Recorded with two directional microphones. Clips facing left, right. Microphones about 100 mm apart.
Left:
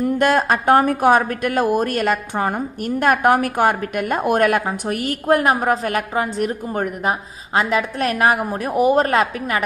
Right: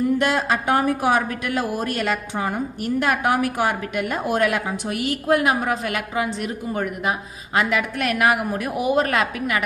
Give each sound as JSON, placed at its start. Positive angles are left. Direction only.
{"t": 0.2, "sound": "a woman's voice", "side_deg": 50}